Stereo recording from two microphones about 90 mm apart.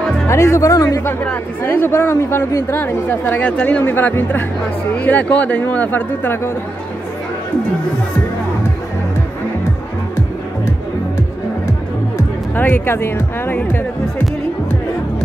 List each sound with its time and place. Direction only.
0.3 s speech: 30° left (ahead or behind)
1.6 s a woman's voice: 25° left (ahead or behind)
12.5 s a woman's voice: 25° left (ahead or behind)